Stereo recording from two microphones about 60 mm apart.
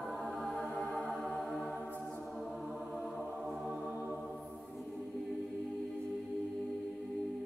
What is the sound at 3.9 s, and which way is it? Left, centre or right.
Music, right.